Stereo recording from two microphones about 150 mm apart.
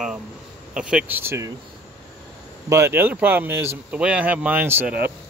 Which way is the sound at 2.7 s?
15° right (ahead or behind).